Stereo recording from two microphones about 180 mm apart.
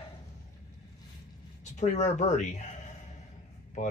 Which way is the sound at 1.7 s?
40° left (ahead or behind).